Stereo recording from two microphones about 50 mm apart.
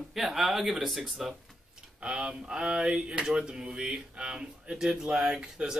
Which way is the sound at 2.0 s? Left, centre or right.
Right.